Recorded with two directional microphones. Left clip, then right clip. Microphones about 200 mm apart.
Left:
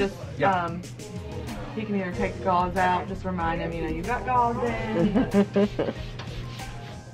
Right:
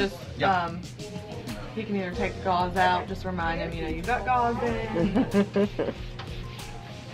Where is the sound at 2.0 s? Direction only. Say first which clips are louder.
Left 1 dB; 20° right (ahead or behind).